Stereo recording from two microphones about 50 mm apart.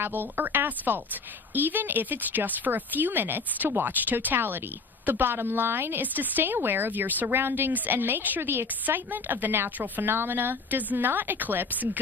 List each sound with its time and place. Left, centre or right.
0.0 s a woman's voice: right
8.4 s a woman's voice: right
8.8 s speech: right